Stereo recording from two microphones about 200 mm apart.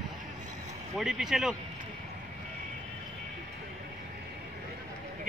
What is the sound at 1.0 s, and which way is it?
Speech, centre (ahead or behind).